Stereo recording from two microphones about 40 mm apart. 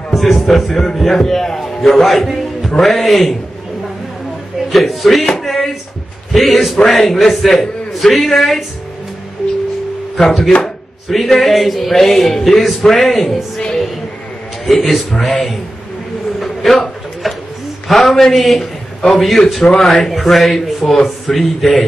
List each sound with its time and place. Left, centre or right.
0.1 s a sound: centre
0.5 s a man's voice: centre
4.6 s speech: centre
5.3 s a sound: centre
6.3 s speech: centre
10.1 s speech: centre
10.6 s a sound: centre
11.2 s speech: centre
14.7 s speech: centre
16.3 s pigeon: centre
17.8 s speech: centre